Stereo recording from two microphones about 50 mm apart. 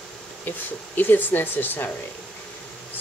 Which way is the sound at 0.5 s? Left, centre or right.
Left.